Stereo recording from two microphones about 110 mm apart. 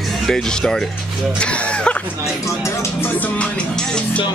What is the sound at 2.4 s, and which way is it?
Music, 25° left (ahead or behind).